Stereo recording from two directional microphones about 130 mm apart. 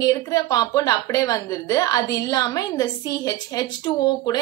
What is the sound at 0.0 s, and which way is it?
A woman's voice, 25° left (ahead or behind).